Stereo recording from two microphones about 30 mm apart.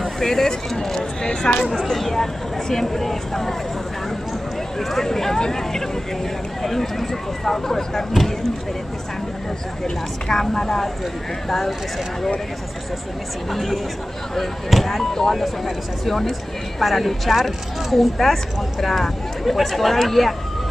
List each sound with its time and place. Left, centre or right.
0.2 s speech: centre
1.8 s speech: centre
4.7 s speech: centre
9.8 s speech: centre
11.4 s speech: centre
13.5 s speech: centre
15.1 s speech: centre